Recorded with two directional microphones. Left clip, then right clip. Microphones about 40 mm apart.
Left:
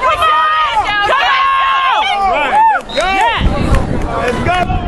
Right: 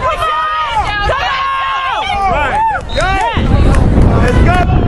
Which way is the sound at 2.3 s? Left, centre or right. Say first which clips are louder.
Left 3 dB; left.